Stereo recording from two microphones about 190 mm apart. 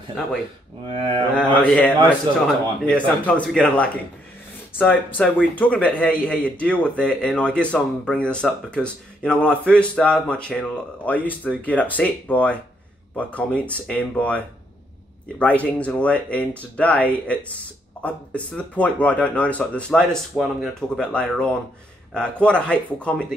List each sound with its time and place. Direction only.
0.8 s mantra: 30° right (ahead or behind)
1.7 s speech: 5° left (ahead or behind)